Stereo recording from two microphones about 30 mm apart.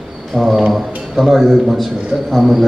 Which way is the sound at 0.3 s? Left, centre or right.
Centre.